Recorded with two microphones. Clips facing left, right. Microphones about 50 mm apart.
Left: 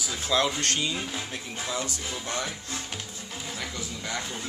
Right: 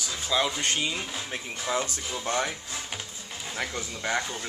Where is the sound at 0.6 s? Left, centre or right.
Centre.